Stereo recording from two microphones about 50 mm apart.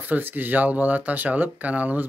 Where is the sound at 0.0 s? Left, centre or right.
Right.